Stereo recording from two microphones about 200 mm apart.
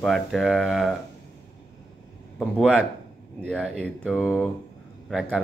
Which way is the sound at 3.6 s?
5° right (ahead or behind).